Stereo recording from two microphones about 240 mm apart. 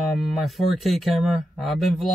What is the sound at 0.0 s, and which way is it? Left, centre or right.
Speech, centre.